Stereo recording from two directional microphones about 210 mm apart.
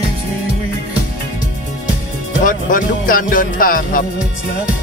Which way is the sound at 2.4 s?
40° left (ahead or behind).